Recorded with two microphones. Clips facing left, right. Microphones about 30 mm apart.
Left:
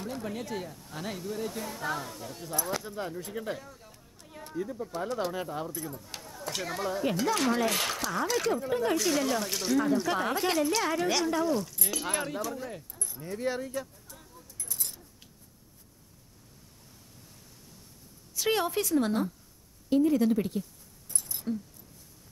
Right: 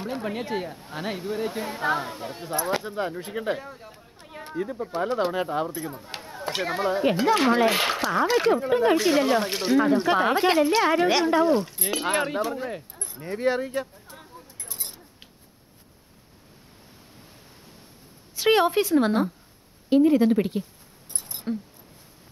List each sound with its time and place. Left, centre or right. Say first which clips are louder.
0.0 s speech: right 6 dB; right
18.3 s speech: right 8 dB; right
21.1 s a sound: right 3 dB; right